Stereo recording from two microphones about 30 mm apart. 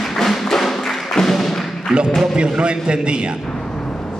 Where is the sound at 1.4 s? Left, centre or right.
Centre.